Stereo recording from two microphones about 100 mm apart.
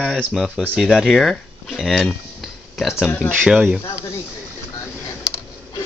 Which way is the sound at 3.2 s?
20° left (ahead or behind).